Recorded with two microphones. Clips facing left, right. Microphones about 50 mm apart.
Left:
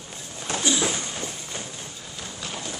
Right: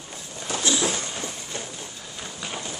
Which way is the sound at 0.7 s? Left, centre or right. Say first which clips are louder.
Even; centre.